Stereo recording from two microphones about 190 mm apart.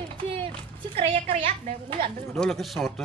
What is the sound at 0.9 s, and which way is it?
A woman's voice, 30° right (ahead or behind).